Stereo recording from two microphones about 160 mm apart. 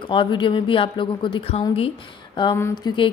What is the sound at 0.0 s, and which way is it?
A woman's voice, 30° left (ahead or behind).